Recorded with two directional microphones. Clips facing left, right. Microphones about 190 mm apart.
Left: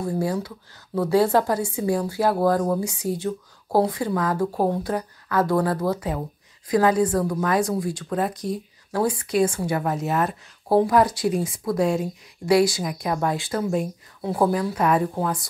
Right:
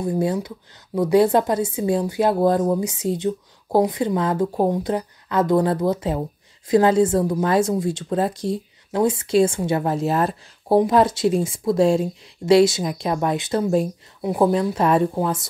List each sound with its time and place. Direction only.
0.0 s speech: 20° right (ahead or behind)
14.2 s speech: 15° right (ahead or behind)